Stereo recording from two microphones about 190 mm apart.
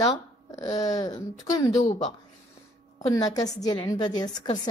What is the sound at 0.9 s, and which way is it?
Speech, 20° left (ahead or behind).